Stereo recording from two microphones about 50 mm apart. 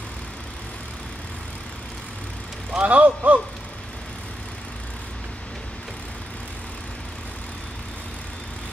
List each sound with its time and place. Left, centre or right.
2.7 s speech: right